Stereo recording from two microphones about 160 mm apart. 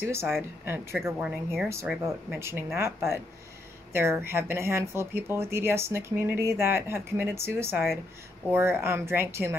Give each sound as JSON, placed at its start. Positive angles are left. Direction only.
{"t": 0.0, "sound": "speech", "side_deg": -15}